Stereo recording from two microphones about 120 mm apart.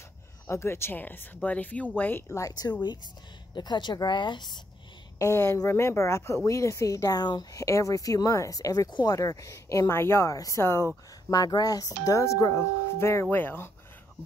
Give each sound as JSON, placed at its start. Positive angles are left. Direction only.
{"t": 0.5, "sound": "a woman's voice", "side_deg": 20}
{"t": 5.2, "sound": "a woman's voice", "side_deg": 25}
{"t": 11.2, "sound": "a woman's voice", "side_deg": 30}